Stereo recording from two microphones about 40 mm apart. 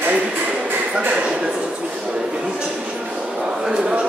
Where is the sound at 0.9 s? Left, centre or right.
Right.